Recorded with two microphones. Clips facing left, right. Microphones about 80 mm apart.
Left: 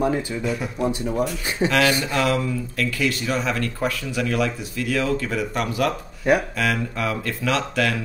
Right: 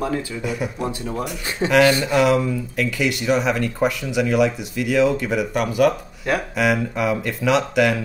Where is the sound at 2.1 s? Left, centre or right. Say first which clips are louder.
Right 5 dB; centre.